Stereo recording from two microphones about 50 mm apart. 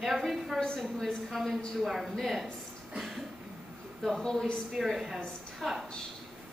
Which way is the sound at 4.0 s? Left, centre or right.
Centre.